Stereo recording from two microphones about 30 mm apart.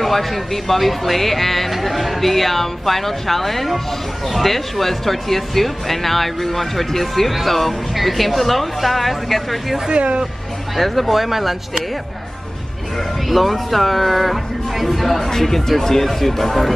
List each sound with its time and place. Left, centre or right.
0.0 s speech: centre
9.8 s speech: right
10.8 s speech: centre
13.3 s speech: centre